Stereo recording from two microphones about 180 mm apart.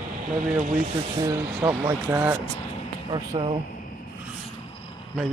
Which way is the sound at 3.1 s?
25° right (ahead or behind).